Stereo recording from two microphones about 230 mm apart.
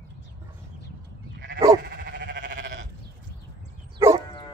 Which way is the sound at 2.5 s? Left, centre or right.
Right.